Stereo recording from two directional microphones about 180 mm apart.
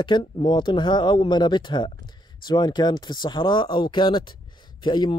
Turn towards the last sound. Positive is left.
turn(degrees=25)  # may be behind; listen again after turning